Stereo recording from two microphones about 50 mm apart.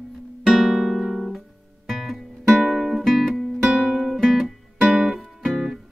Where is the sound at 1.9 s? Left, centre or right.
Centre.